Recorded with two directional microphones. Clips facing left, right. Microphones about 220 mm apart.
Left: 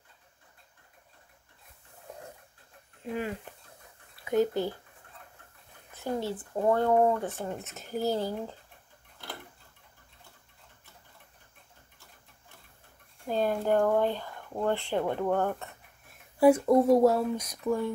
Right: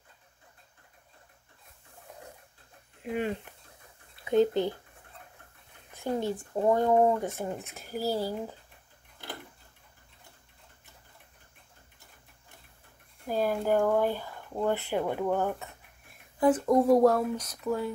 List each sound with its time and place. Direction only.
3.0 s speech: 20° right (ahead or behind)
5.9 s speech: 15° right (ahead or behind)
7.6 s speech: centre (ahead or behind)
13.3 s speech: 5° right (ahead or behind)
16.3 s speech: 10° left (ahead or behind)